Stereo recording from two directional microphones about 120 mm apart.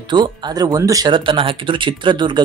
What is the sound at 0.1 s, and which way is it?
Speech, 35° right (ahead or behind).